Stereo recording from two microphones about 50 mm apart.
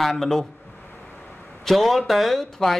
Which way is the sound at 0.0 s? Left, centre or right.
Centre.